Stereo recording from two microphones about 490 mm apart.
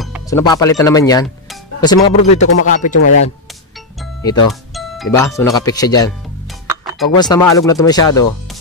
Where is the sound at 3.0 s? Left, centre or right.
Left.